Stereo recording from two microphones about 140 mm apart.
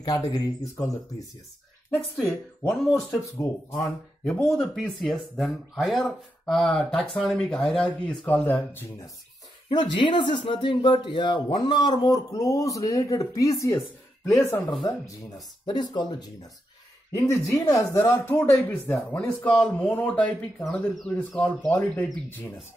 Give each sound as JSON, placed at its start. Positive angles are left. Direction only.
{"t": 0.0, "sound": "speech", "side_deg": 30}
{"t": 2.7, "sound": "speech", "side_deg": 0}
{"t": 9.7, "sound": "speech", "side_deg": 35}
{"t": 15.6, "sound": "speech", "side_deg": 35}